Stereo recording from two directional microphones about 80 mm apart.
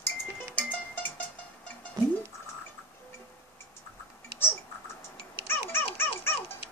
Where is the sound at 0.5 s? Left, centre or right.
Centre.